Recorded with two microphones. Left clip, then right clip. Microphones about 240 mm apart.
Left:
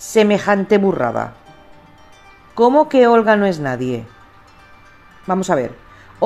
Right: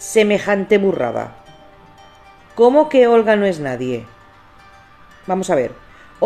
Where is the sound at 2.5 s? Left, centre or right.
Centre.